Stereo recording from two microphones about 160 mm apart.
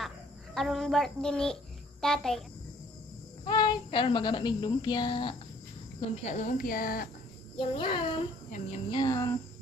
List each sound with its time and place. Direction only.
0.6 s a child's voice: centre (ahead or behind)
3.4 s a child's voice: 30° left (ahead or behind)
5.9 s speech: 45° left (ahead or behind); by 7.1 s 65° left (ahead or behind)
7.5 s a child's voice: 30° left (ahead or behind)
8.5 s speech: 50° left (ahead or behind)
8.9 s a child's voice: 25° left (ahead or behind)